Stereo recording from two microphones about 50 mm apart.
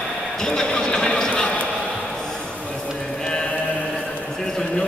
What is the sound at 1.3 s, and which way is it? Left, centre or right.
Basketball bounce, centre.